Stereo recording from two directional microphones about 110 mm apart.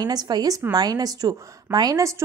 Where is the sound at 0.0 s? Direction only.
35° right (ahead or behind).